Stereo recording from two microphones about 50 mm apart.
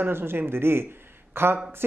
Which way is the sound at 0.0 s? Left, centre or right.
Right.